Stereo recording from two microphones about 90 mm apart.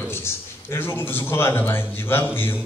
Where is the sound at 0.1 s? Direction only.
30° left (ahead or behind).